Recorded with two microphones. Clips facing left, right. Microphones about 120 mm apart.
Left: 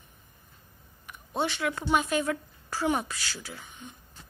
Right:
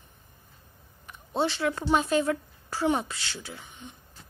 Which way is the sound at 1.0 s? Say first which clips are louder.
Right 3 dB; 30° right (ahead or behind).